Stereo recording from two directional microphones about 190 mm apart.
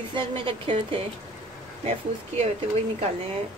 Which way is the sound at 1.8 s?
35° right (ahead or behind).